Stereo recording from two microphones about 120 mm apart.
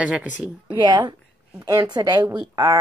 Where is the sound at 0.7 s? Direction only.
40° right (ahead or behind).